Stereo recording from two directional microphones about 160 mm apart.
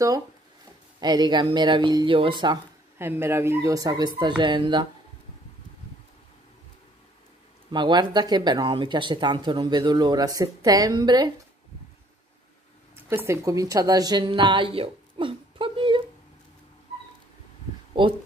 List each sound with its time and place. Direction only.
0.9 s speech: 25° right (ahead or behind)
3.0 s speech: 15° right (ahead or behind)
7.7 s speech: 25° right (ahead or behind)
13.1 s a woman's voice: 15° right (ahead or behind); by 16.0 s 30° right (ahead or behind)
18.0 s speech: 30° right (ahead or behind)